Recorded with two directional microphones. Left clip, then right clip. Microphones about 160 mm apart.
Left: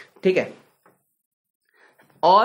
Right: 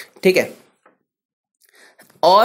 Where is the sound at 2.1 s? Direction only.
25° right (ahead or behind).